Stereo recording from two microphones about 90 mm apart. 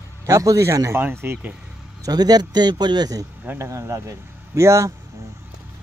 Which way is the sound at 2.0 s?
45° right (ahead or behind).